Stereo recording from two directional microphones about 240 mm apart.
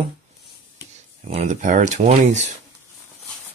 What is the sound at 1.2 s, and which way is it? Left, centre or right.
Speech, right.